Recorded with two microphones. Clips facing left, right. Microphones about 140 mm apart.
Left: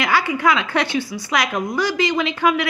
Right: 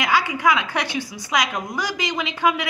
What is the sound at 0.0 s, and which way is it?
A woman's voice, 15° right (ahead or behind).